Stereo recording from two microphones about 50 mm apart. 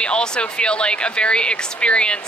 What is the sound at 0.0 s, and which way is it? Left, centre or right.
Speech, centre.